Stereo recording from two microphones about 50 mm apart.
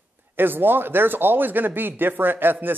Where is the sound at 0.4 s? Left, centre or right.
Right.